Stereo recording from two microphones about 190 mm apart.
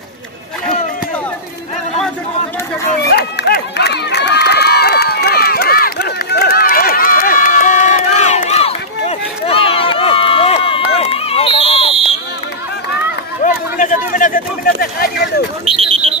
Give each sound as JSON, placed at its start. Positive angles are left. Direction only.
{"t": 3.1, "sound": "run", "side_deg": 60}
{"t": 13.4, "sound": "a sound", "side_deg": 40}
{"t": 15.6, "sound": "alarm", "side_deg": -30}